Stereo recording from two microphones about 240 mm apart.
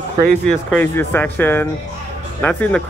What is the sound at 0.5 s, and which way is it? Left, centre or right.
Speech, centre.